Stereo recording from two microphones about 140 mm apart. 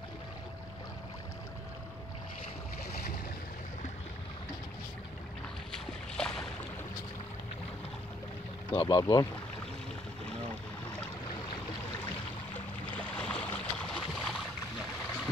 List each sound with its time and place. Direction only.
5.7 s boat: 5° left (ahead or behind)
8.7 s speech: 30° left (ahead or behind)
12.5 s a sound: 10° left (ahead or behind)